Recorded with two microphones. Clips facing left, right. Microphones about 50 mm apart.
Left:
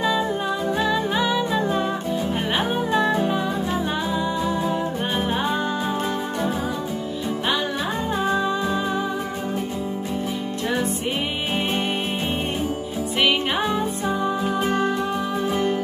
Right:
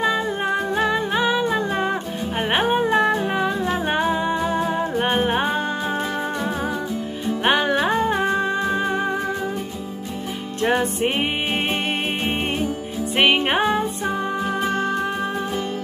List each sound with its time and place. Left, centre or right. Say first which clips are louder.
0.5 s music: right 5 dB; right
1.1 s humming: right 2 dB; right
1.7 s music: right 1 dB; right
2.5 s humming: right 5 dB; right
7.4 s music: right 7 dB; right
8.3 s music: right 1 dB; right
10.6 s music: right 6 dB; right
13.2 s music: right 4 dB; right